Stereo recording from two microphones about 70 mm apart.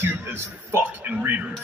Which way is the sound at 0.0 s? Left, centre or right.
Right.